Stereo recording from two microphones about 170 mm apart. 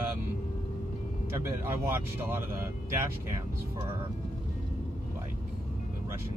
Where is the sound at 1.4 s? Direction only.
15° right (ahead or behind).